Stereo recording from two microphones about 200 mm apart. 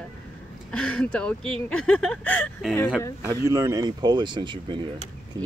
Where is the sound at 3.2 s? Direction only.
15° right (ahead or behind).